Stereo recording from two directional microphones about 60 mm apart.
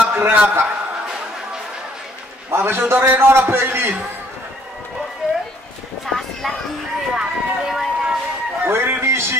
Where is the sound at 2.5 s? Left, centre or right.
Right.